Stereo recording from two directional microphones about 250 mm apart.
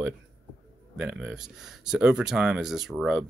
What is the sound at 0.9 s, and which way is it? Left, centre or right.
Speech, centre.